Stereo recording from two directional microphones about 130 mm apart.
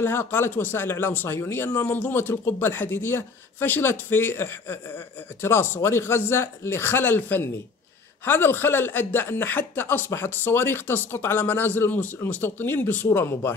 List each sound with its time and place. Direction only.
0.0 s speech: 15° left (ahead or behind)